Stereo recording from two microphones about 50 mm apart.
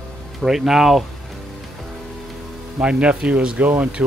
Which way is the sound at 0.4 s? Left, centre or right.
Centre.